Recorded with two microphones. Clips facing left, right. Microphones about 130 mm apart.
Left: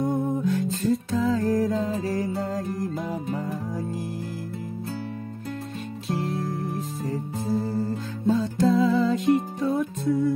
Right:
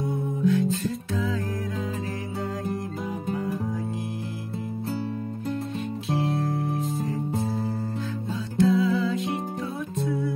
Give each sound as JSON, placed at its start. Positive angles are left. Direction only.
{"t": 0.0, "sound": "music", "side_deg": 45}
{"t": 8.3, "sound": "music", "side_deg": 45}